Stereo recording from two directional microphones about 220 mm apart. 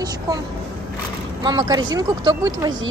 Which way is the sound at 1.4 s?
15° right (ahead or behind).